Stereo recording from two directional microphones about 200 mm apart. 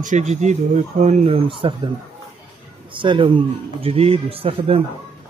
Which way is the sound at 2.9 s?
25° right (ahead or behind).